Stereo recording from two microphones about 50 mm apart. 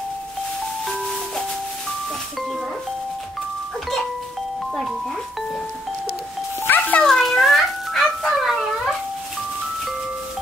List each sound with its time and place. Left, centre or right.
6.7 s ice cream truck: left
7.0 s music: centre